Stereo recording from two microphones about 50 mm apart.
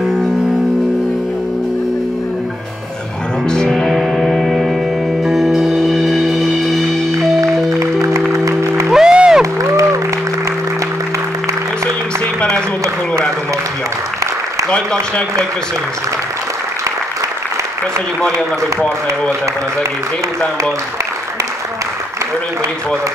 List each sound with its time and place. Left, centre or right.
3.4 s music: centre
3.8 s music: centre
7.7 s music: right
8.3 s music: right
8.9 s music: centre
9.4 s music: right